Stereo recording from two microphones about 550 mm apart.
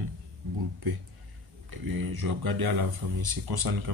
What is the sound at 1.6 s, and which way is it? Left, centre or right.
Speech, right.